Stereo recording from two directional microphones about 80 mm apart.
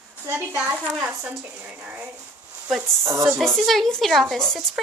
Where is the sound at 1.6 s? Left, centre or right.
Centre.